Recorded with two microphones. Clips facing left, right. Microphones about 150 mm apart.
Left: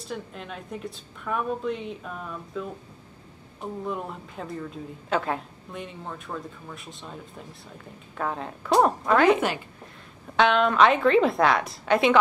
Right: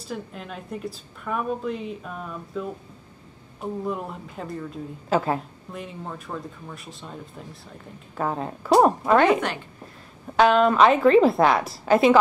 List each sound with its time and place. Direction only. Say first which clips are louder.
0.0 s a woman's voice: right 1 dB; centre (ahead or behind)
3.8 s a woman's voice: right 2 dB; centre (ahead or behind)
8.2 s a woman's voice: right 3 dB; 10° right (ahead or behind)